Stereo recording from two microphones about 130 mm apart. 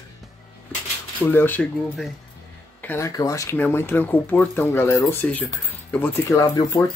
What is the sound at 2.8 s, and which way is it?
Speech, 20° left (ahead or behind).